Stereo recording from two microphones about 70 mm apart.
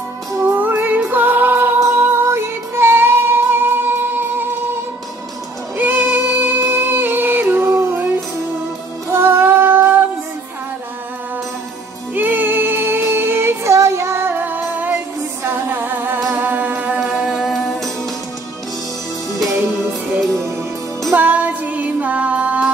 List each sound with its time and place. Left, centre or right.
0.5 s music: right
2.0 s music: right
5.8 s music: right
9.1 s female singing: right
12.1 s music: right
17.0 s music: centre
21.1 s music: right